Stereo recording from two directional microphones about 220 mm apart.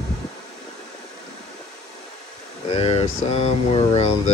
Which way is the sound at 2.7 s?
25° left (ahead or behind).